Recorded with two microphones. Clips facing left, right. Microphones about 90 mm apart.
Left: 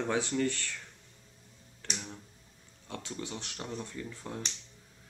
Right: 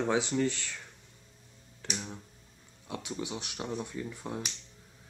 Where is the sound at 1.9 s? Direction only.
5° right (ahead or behind).